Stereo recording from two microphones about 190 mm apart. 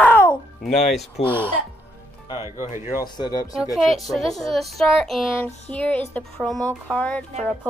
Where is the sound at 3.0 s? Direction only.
20° left (ahead or behind).